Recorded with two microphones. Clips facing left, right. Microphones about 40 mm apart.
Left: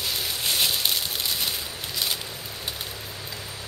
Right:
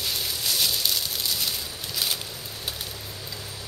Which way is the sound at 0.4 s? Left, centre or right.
Left.